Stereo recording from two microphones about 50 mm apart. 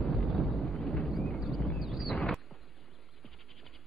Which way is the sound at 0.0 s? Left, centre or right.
Centre.